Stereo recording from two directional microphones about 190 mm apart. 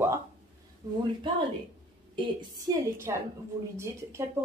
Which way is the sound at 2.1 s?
20° right (ahead or behind).